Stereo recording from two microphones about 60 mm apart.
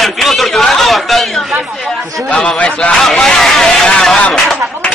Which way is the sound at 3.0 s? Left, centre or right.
Centre.